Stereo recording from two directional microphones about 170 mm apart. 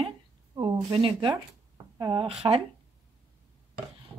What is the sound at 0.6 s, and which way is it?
Speech, 20° right (ahead or behind).